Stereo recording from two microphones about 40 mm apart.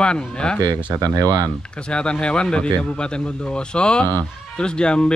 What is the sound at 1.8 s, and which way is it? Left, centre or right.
Speech, left.